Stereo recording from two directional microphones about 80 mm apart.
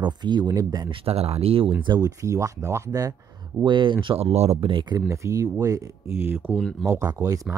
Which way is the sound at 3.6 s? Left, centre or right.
Right.